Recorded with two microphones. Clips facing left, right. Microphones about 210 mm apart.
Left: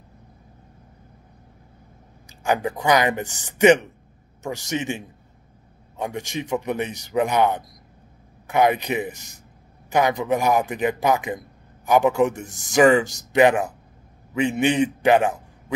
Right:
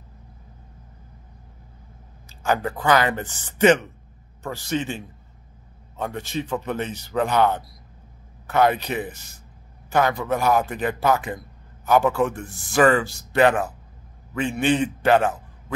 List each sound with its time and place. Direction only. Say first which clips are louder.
2.4 s a man's voice: left 1 dB; 15° left (ahead or behind)